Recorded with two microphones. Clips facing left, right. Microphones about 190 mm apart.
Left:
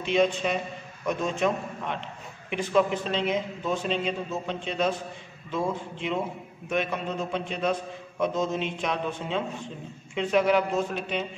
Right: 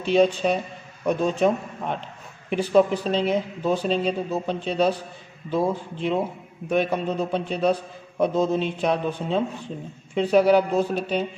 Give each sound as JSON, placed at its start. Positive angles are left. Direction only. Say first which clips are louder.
{"t": 0.0, "sound": "a man's voice", "louder": "right 5 dB", "side_deg": -35}